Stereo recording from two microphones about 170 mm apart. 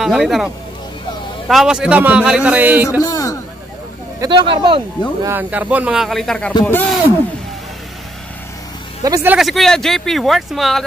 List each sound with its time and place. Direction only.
0.0 s speech: centre (ahead or behind)
1.5 s a man's voice: 5° right (ahead or behind)
3.0 s a man's voice: 20° left (ahead or behind)
4.2 s speech: 30° right (ahead or behind)
5.2 s a man's voice: 10° right (ahead or behind); by 7.0 s 10° left (ahead or behind)
9.0 s speech: 20° right (ahead or behind)
9.3 s speech: centre (ahead or behind)